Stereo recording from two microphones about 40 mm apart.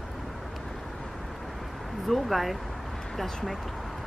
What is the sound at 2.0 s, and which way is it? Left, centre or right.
Speech, centre.